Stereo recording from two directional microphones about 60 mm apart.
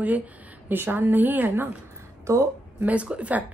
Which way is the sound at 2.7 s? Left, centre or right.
Right.